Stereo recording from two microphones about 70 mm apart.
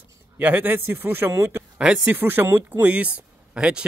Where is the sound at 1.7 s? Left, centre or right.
Centre.